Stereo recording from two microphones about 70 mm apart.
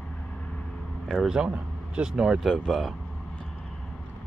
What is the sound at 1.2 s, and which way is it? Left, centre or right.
Speech, centre.